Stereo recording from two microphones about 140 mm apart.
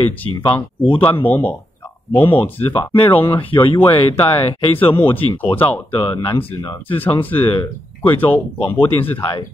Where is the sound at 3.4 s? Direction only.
40° left (ahead or behind).